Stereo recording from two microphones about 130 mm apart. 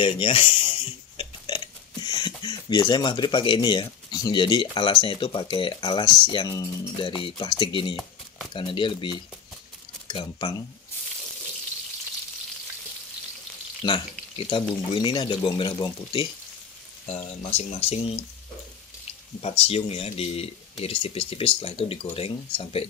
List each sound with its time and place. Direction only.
0.0 s speech: 40° left (ahead or behind); by 6.9 s 25° left (ahead or behind)
7.0 s speech: 40° left (ahead or behind)
15.0 s speech: 35° left (ahead or behind)
17.4 s speech: 55° left (ahead or behind)
19.4 s speech: 50° left (ahead or behind)